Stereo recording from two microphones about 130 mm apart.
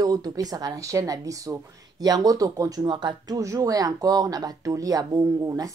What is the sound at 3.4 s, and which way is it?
Speech, 25° right (ahead or behind).